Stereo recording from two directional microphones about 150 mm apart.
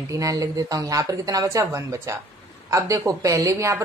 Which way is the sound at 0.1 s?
25° right (ahead or behind).